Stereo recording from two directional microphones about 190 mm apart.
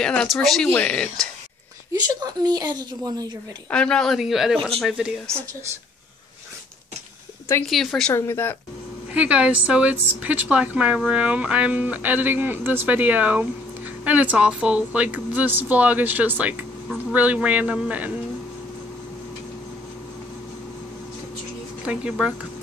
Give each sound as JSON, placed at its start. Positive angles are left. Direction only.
{"t": 0.0, "sound": "speech", "side_deg": 5}
{"t": 1.9, "sound": "speech", "side_deg": -20}
{"t": 3.7, "sound": "speech", "side_deg": 5}
{"t": 7.6, "sound": "speech", "side_deg": 0}
{"t": 8.1, "sound": "speech", "side_deg": 15}
{"t": 9.1, "sound": "speech", "side_deg": -5}
{"t": 21.8, "sound": "speech", "side_deg": -5}